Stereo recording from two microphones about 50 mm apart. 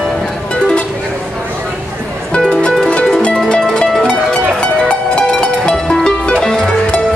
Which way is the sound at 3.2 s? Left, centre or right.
Centre.